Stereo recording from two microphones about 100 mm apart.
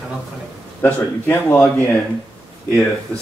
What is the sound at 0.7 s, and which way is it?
Speech, 20° left (ahead or behind).